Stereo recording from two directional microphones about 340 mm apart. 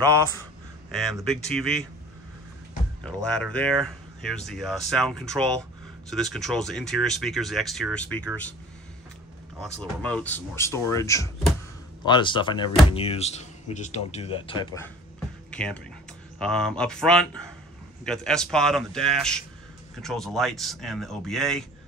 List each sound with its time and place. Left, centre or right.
1.1 s speech: centre
3.1 s speech: centre
9.6 s speech: centre
15.5 s speech: centre